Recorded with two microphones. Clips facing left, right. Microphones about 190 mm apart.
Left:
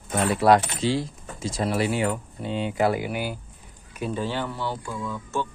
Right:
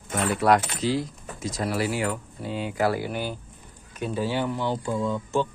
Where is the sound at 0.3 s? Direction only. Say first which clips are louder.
Left 2 dB; 25° left (ahead or behind); by 3.3 s 10° left (ahead or behind).